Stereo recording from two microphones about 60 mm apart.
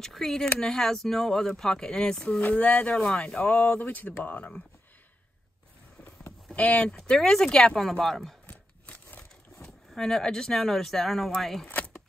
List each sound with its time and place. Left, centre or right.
0.0 s speech: centre
2.4 s speech: left
6.5 s speech: centre
8.5 s a sound: left
9.9 s speech: centre